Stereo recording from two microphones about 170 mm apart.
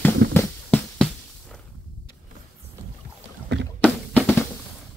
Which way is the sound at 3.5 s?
90° right.